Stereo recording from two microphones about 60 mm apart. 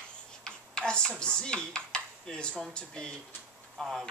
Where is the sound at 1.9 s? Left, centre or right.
Centre.